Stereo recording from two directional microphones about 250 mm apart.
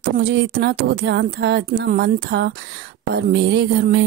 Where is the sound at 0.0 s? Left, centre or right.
Right.